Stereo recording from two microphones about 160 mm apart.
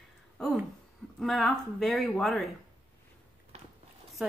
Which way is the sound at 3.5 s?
40° right (ahead or behind).